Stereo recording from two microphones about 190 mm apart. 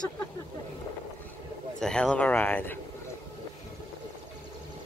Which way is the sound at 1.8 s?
5° left (ahead or behind).